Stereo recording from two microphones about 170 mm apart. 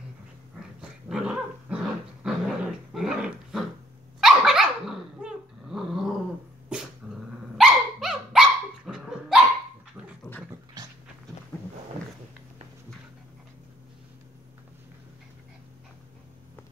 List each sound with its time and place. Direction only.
0.7 s dog: 5° right (ahead or behind)
10.5 s dog: 20° right (ahead or behind)